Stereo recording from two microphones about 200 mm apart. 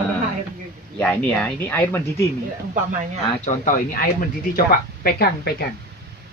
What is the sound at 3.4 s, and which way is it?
Speech, 40° left (ahead or behind).